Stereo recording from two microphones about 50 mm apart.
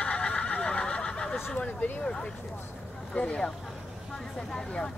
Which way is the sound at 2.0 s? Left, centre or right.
Centre.